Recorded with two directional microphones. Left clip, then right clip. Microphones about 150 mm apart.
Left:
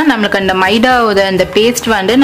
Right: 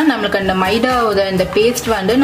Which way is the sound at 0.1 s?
25° left (ahead or behind).